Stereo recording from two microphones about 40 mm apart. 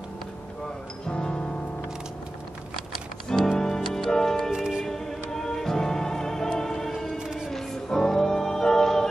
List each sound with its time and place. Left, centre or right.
1.0 s music: left
3.5 s music: centre
4.6 s music: centre
4.8 s music: centre
7.2 s music: centre
7.5 s music: centre